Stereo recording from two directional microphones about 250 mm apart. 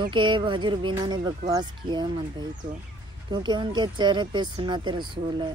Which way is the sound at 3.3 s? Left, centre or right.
Centre.